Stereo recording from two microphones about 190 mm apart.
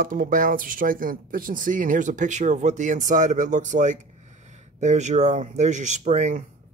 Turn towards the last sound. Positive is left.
turn(degrees=-40)  # may be behind; listen again after turning